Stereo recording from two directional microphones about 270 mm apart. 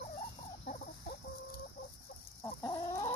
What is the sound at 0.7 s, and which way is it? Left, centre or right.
Chicken, left.